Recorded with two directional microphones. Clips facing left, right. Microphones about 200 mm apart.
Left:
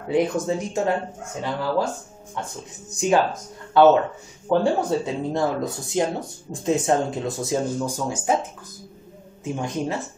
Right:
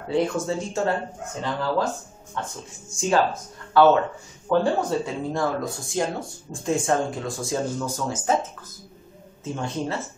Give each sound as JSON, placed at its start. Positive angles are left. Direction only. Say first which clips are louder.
{"t": 0.1, "sound": "speech", "louder": "left 2 dB", "side_deg": 15}
{"t": 9.4, "sound": "speech", "louder": "left 2 dB", "side_deg": 15}